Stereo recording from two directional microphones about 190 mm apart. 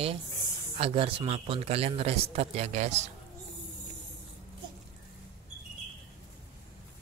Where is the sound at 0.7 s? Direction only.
30° right (ahead or behind).